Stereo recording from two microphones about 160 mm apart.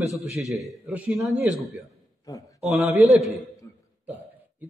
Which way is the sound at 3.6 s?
20° left (ahead or behind).